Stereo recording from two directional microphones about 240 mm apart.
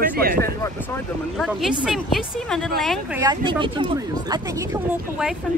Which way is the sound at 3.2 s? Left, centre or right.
Centre.